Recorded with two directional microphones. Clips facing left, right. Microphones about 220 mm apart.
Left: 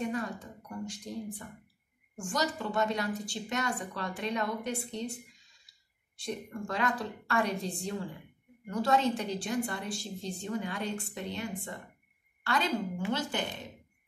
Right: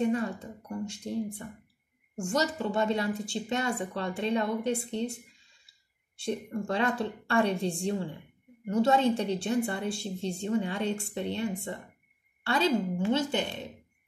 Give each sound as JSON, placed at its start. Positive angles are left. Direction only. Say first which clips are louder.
{"t": 0.0, "sound": "speech", "louder": "right 6 dB", "side_deg": -25}